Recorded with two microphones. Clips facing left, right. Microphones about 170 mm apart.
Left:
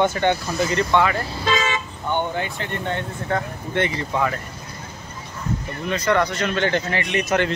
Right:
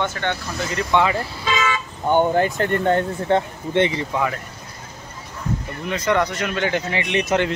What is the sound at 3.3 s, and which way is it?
Speech, 25° right (ahead or behind).